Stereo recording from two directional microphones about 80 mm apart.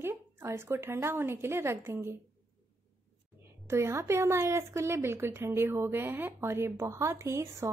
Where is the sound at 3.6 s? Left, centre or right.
Right.